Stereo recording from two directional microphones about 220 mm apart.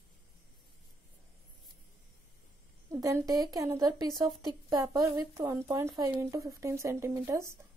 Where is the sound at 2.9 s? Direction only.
15° right (ahead or behind).